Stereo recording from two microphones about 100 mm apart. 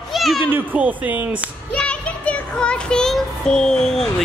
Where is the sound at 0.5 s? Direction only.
20° right (ahead or behind).